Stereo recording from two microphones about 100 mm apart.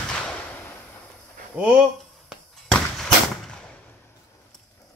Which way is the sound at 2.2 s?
5° left (ahead or behind).